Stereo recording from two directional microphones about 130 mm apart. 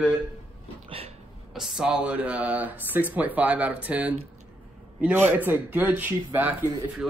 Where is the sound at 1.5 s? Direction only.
5° right (ahead or behind).